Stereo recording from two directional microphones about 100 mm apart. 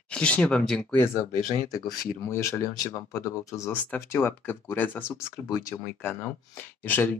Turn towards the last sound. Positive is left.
turn(degrees=20)  # may be behind; listen again after turning